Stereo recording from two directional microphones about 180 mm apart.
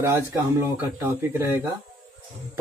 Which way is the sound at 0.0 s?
15° right (ahead or behind).